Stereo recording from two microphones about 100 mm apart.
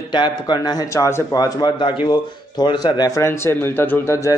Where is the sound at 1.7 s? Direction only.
55° left (ahead or behind).